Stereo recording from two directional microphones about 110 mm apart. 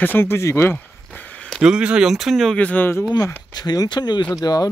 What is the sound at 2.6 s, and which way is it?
Speech, 15° left (ahead or behind).